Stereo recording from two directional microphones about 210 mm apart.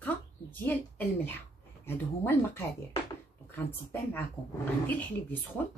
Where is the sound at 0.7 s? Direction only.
10° left (ahead or behind).